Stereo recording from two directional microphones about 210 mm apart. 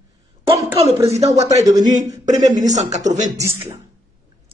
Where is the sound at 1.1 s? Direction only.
15° right (ahead or behind).